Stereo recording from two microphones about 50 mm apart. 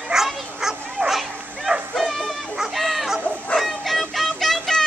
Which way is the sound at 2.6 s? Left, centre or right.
Centre.